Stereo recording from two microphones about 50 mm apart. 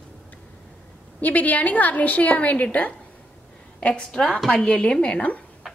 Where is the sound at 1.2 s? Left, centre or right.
Left.